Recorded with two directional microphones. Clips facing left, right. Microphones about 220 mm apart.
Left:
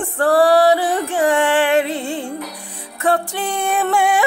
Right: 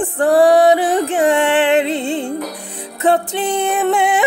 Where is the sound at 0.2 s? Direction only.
20° right (ahead or behind).